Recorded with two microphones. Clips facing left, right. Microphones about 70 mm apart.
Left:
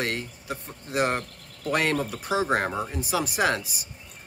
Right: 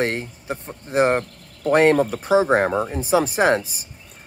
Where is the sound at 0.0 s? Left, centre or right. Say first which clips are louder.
Right 6 dB; right.